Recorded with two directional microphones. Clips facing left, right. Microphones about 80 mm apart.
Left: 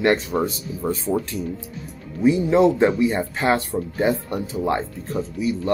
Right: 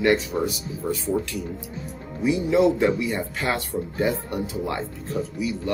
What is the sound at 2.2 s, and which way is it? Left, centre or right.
Speech, left.